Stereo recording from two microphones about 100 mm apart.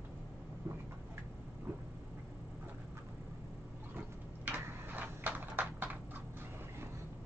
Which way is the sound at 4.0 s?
20° right (ahead or behind).